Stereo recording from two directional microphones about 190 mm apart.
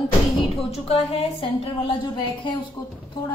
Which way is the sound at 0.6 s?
30° left (ahead or behind).